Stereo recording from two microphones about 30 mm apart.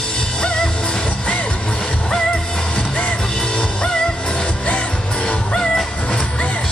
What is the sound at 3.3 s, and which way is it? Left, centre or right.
Music, left.